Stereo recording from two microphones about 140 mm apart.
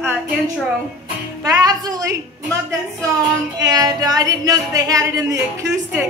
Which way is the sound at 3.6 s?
25° right (ahead or behind).